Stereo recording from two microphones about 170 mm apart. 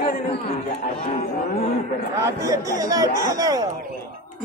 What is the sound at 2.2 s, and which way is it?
Speech, 20° right (ahead or behind).